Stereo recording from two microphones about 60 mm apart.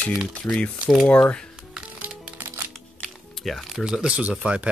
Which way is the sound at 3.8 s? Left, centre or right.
Centre.